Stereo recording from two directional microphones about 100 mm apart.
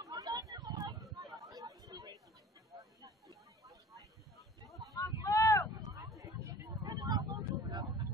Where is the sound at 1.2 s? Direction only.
35° right (ahead or behind).